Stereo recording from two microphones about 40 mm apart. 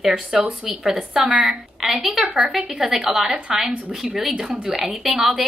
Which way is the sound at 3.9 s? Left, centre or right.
Centre.